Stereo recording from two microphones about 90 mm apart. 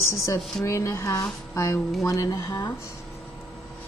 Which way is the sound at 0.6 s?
35° left (ahead or behind).